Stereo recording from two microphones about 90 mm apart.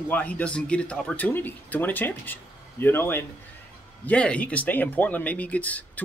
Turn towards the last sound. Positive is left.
turn(degrees=15)  # may be behind; listen again after turning